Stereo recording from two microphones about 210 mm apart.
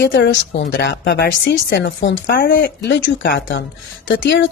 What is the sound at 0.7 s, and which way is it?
Speech, 60° left (ahead or behind).